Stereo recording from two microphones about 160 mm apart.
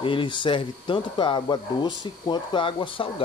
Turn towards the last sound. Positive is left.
turn(degrees=30)  # may be behind; listen again after turning